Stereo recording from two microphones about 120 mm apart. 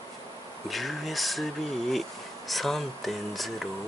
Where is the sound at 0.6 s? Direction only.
Centre (ahead or behind).